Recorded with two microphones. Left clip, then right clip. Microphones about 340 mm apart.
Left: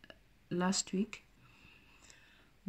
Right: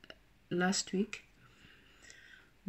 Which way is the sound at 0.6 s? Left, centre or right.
Left.